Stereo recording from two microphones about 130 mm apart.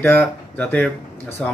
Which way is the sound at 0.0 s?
15° left (ahead or behind).